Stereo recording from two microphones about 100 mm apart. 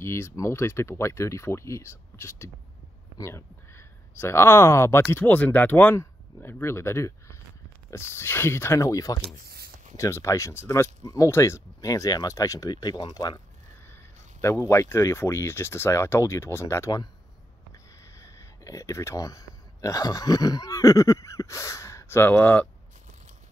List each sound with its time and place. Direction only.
0.0 s speech: 25° left (ahead or behind)
5.1 s speech: 15° left (ahead or behind); by 13.4 s 45° left (ahead or behind)
14.4 s speech: 30° left (ahead or behind)
18.0 s speech: 30° left (ahead or behind)
22.3 s speech: 15° left (ahead or behind)